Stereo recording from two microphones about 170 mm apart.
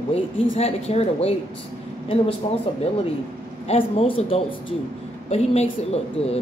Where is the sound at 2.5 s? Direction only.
30° left (ahead or behind).